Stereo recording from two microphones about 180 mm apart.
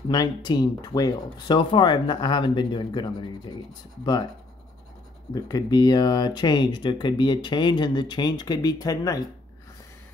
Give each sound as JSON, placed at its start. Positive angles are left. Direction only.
{"t": 0.1, "sound": "speech", "side_deg": 25}
{"t": 5.3, "sound": "speech", "side_deg": 20}